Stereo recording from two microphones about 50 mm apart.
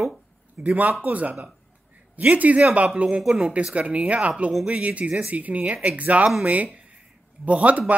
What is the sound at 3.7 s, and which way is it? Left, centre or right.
Speech, right.